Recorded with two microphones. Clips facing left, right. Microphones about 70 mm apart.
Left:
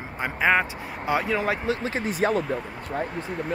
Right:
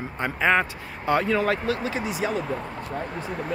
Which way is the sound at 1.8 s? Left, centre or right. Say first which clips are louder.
Left 2 dB; left.